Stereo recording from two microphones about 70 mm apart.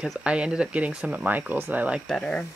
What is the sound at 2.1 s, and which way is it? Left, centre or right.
Speech, centre.